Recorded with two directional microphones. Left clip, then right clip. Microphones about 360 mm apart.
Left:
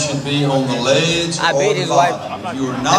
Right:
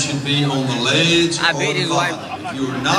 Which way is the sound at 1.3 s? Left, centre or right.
Left.